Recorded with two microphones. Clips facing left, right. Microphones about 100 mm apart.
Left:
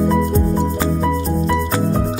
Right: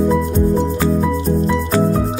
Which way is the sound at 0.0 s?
Centre (ahead or behind).